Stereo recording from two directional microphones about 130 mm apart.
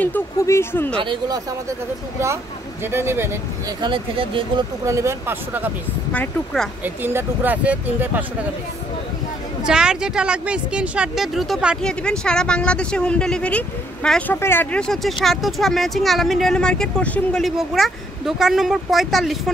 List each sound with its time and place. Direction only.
0.0 s speech: 15° left (ahead or behind)
0.9 s speech: 40° right (ahead or behind)
2.9 s speech: 20° right (ahead or behind)
3.8 s speech: 40° right (ahead or behind)
4.8 s speech: 20° right (ahead or behind)
6.1 s speech: 5° left (ahead or behind)
6.8 s speech: 15° right (ahead or behind)
9.7 s speech: 5° right (ahead or behind)